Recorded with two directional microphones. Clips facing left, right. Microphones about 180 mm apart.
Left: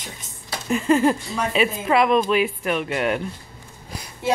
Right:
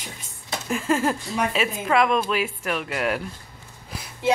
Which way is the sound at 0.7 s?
Centre (ahead or behind).